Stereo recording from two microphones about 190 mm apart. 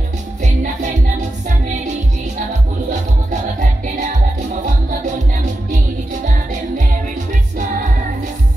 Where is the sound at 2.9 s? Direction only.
40° right (ahead or behind).